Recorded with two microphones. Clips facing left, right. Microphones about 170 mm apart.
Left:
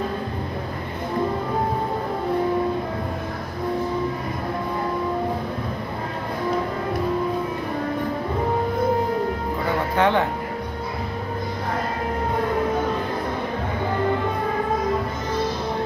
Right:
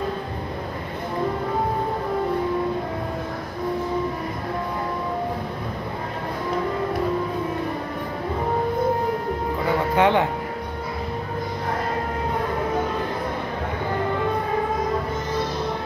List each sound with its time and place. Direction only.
9.9 s music: 15° right (ahead or behind)